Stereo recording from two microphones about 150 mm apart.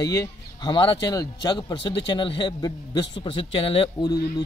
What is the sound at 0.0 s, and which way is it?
Speech, 25° left (ahead or behind).